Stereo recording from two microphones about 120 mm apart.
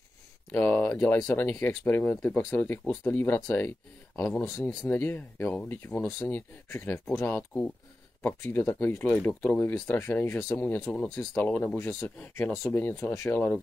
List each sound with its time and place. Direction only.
0.5 s speech: 15° left (ahead or behind)